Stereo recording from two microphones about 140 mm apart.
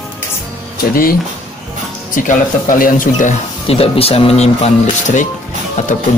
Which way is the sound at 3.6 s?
45° left (ahead or behind).